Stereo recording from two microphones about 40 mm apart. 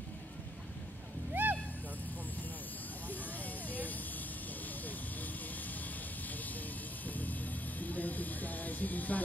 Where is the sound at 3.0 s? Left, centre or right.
Left.